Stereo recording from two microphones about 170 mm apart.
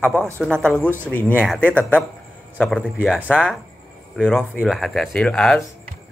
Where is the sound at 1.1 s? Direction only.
10° left (ahead or behind).